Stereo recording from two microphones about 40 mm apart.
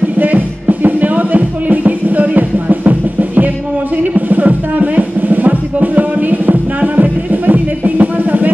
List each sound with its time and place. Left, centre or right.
0.2 s music: right